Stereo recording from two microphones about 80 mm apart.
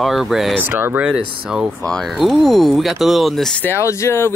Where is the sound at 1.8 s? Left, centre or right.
Centre.